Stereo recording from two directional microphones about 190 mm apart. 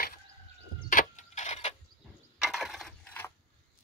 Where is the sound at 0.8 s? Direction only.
40° left (ahead or behind).